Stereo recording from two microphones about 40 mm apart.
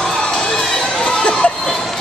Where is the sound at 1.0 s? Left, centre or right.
Left.